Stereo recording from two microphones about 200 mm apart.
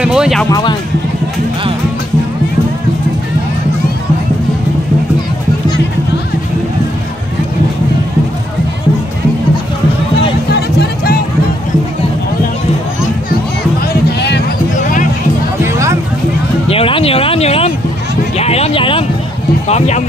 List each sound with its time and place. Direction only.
0.0 s music: 5° right (ahead or behind)
0.5 s speech: 20° left (ahead or behind)
10.5 s music: 55° left (ahead or behind)
14.8 s music: 40° left (ahead or behind)
15.6 s music: 15° right (ahead or behind)
16.6 s a sound: 30° left (ahead or behind)
18.4 s speech: 30° left (ahead or behind)